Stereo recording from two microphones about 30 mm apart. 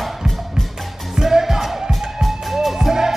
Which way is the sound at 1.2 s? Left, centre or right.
Centre.